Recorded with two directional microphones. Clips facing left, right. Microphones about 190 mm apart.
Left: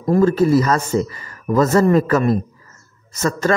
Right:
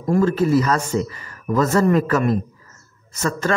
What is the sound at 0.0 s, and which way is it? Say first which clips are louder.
A man's voice: left 3 dB; 35° left (ahead or behind).